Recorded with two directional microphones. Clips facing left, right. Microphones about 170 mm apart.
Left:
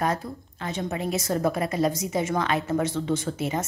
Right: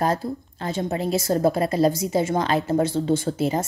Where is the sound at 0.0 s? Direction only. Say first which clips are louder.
Right 4 dB; 30° right (ahead or behind).